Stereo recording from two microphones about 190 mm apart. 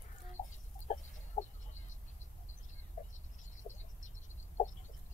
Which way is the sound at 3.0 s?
45° left (ahead or behind).